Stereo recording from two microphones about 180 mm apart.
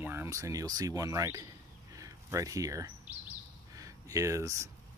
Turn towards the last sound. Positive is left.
turn(degrees=-15)  # may be behind; listen again after turning